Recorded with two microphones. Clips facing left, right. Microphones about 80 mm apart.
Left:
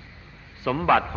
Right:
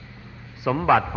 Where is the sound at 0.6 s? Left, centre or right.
Centre.